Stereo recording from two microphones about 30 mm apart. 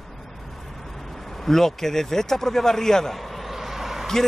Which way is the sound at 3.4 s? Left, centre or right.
Centre.